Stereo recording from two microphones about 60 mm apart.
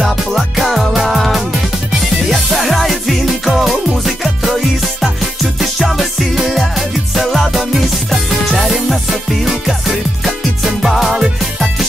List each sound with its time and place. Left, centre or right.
0.0 s music: centre